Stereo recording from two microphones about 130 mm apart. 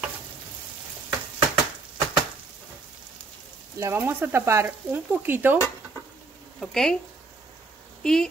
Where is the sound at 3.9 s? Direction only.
15° right (ahead or behind).